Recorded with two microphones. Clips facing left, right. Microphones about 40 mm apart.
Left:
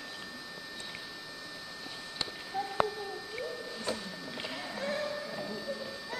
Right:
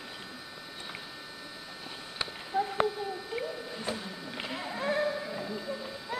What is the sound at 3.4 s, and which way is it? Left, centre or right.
Music, centre.